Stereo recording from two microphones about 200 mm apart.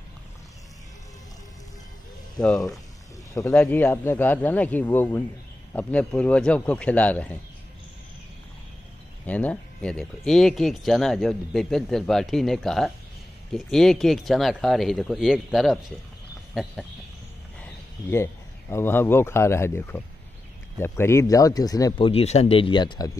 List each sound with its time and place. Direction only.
2.3 s speech: centre (ahead or behind)
9.2 s speech: 5° left (ahead or behind)
18.1 s speech: 10° left (ahead or behind)